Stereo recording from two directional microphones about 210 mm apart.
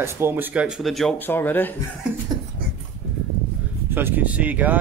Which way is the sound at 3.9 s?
10° right (ahead or behind).